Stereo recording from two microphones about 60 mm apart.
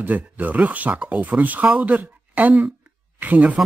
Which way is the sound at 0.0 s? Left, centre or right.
Right.